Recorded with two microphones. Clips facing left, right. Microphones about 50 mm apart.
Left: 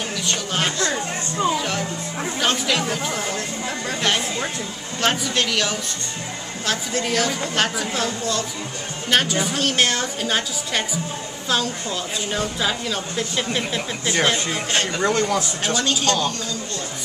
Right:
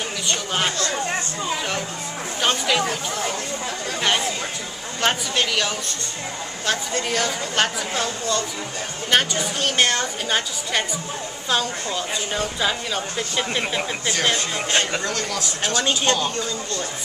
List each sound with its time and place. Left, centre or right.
0.3 s a woman's voice: centre
2.4 s speech: centre
5.0 s a woman's voice: centre
14.2 s speech: centre
15.0 s speech: left
15.8 s speech: right